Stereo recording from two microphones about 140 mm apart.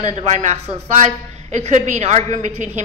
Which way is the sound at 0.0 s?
55° right (ahead or behind).